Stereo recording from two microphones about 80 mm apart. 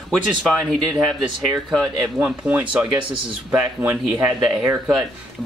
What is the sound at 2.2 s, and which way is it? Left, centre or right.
Speech, centre.